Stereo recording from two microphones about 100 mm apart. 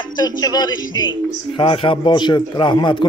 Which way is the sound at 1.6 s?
60° left (ahead or behind).